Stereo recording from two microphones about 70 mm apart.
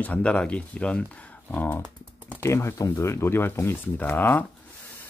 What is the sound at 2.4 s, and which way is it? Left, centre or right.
Speech, left.